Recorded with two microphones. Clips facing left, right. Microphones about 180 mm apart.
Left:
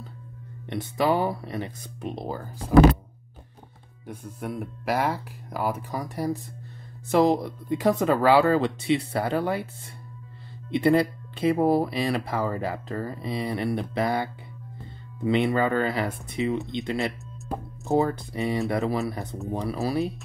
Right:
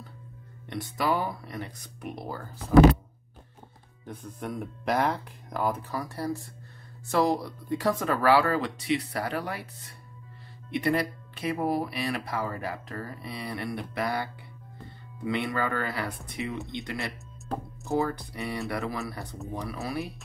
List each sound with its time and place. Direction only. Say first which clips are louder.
0.7 s speech: left 4 dB; 20° left (ahead or behind)
4.0 s speech: left 2 dB; 10° left (ahead or behind); by 9.7 s 25° left (ahead or behind)
10.7 s speech: left 6 dB; 25° left (ahead or behind)